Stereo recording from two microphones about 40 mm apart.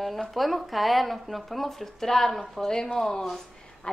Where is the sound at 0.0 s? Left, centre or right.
Centre.